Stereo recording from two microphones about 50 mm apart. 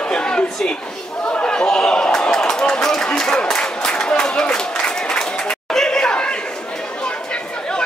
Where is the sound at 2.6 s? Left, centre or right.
Centre.